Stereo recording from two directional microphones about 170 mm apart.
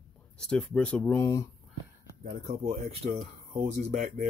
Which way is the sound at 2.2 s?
45° right (ahead or behind).